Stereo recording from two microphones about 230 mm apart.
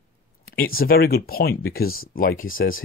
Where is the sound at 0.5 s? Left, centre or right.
Left.